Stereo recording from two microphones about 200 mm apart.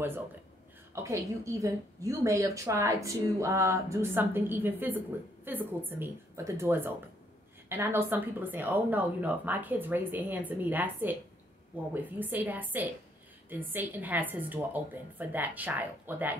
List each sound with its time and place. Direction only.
0.9 s a woman's voice: 15° right (ahead or behind)